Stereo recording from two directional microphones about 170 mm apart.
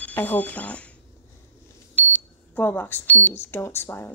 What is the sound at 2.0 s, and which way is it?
Speech, 10° left (ahead or behind).